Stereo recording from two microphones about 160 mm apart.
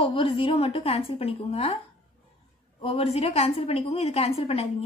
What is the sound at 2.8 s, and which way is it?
Speech, 35° left (ahead or behind).